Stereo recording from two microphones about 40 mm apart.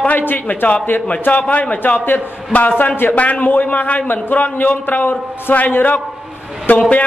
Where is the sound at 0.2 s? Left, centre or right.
Left.